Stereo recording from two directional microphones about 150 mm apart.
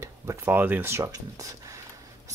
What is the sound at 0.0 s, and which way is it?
Speech, 15° right (ahead or behind).